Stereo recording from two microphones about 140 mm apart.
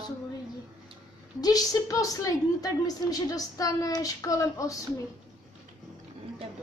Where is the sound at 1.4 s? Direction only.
25° left (ahead or behind).